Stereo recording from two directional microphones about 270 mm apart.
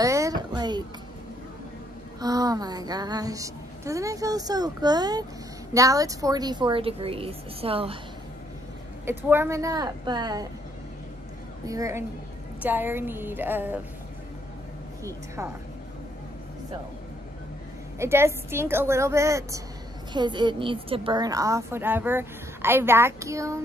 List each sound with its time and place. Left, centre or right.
0.0 s a sound: centre
2.1 s a woman's voice: centre
9.3 s a woman's voice: centre
11.6 s a woman's voice: centre
17.9 s a woman's voice: centre